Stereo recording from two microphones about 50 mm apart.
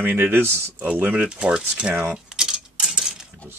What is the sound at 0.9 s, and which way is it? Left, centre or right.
Speech, right.